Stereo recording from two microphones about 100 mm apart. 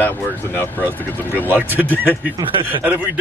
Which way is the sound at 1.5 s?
15° right (ahead or behind).